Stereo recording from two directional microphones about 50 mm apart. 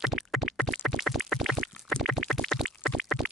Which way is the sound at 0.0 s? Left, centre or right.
Centre.